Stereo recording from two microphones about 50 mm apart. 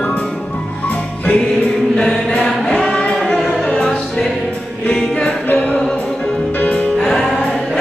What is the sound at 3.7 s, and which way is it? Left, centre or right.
Music, centre.